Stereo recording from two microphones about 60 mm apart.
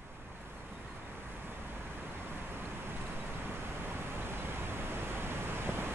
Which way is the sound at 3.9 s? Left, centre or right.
Right.